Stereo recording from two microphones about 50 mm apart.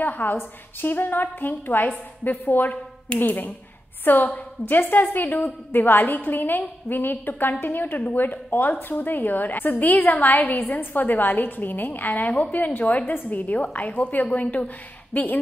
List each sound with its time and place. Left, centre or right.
0.0 s a woman's voice: left